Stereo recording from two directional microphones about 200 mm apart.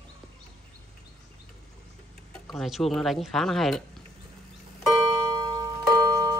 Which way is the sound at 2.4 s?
Centre (ahead or behind).